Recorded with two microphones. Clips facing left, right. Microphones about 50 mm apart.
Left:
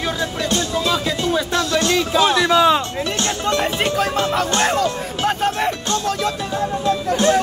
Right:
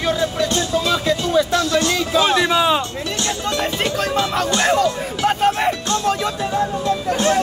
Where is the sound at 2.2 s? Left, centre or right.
Right.